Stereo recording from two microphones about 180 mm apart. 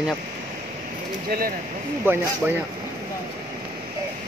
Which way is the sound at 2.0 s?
10° right (ahead or behind).